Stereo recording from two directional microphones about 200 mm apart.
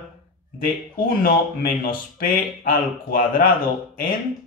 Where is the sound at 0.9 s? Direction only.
45° left (ahead or behind).